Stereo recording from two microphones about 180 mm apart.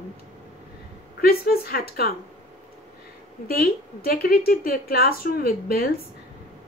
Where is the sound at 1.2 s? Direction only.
60° left (ahead or behind).